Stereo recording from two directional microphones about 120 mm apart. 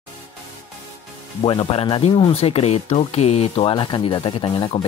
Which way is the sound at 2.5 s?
60° left (ahead or behind).